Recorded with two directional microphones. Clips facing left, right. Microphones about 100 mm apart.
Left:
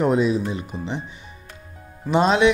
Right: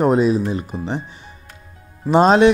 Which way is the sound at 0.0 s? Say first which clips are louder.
Right 4 dB; 40° right (ahead or behind).